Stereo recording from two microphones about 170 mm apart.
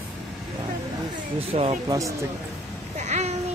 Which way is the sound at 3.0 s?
40° right (ahead or behind).